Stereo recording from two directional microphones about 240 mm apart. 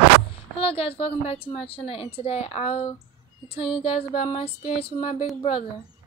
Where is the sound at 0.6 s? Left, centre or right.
Left.